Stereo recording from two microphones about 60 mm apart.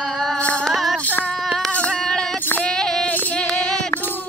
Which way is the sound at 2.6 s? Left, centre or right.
Centre.